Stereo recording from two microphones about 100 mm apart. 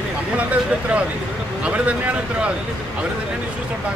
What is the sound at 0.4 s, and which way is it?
A man's voice, 15° right (ahead or behind).